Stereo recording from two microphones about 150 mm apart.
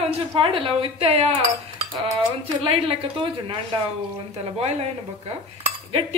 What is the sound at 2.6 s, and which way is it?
A woman's voice, 35° right (ahead or behind).